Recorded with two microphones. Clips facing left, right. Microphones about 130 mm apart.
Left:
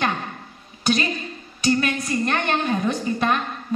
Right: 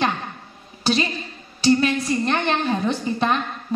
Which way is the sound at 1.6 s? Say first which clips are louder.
Right 3 dB; 30° right (ahead or behind).